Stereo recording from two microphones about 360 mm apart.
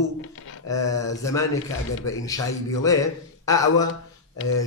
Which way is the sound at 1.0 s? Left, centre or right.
Centre.